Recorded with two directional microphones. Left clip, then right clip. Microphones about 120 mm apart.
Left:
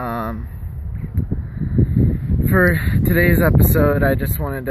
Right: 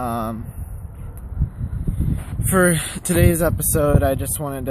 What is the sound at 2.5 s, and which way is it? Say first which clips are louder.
Speech: left 1 dB; 20° right (ahead or behind).